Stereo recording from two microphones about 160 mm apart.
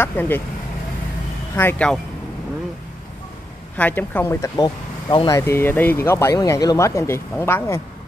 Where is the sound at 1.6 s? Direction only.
10° left (ahead or behind).